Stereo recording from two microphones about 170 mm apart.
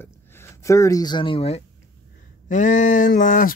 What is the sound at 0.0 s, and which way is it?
Speech, 15° left (ahead or behind).